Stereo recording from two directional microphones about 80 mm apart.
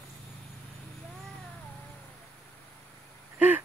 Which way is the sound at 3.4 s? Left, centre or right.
Right.